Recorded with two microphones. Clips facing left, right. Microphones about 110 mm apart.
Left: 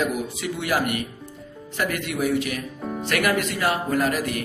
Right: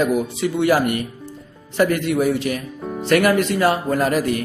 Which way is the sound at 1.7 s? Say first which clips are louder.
Right 8 dB; 35° right (ahead or behind).